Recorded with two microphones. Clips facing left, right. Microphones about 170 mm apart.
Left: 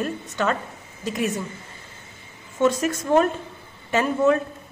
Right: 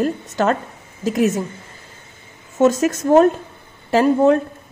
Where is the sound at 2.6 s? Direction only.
45° right (ahead or behind).